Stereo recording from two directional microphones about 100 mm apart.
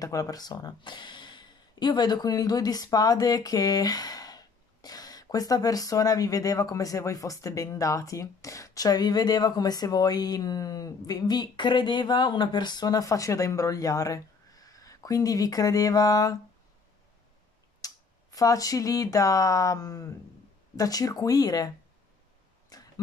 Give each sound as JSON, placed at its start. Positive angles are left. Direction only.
{"t": 0.0, "sound": "speech", "side_deg": 35}
{"t": 17.8, "sound": "speech", "side_deg": 35}
{"t": 22.7, "sound": "a sound", "side_deg": 40}